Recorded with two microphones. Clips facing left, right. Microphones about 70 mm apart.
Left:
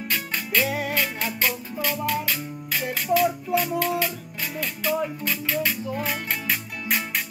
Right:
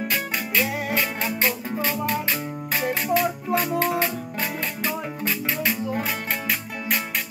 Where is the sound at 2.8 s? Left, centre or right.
Right.